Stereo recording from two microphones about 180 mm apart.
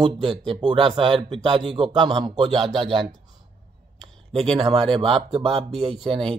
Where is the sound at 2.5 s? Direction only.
Centre (ahead or behind).